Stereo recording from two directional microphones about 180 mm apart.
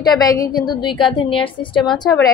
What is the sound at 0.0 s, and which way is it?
A woman's voice, 20° left (ahead or behind).